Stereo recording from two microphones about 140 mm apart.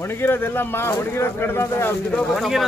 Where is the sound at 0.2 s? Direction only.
15° left (ahead or behind).